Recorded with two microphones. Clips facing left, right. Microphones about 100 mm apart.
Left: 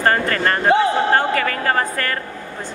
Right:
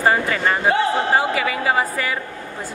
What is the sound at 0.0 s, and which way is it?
Speech, 5° right (ahead or behind).